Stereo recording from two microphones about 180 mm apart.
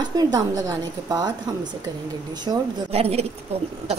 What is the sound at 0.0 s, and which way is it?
A woman's voice, 20° right (ahead or behind).